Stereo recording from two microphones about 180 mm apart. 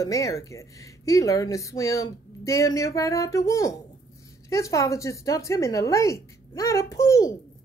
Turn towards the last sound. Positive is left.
turn(degrees=15)  # may be behind; listen again after turning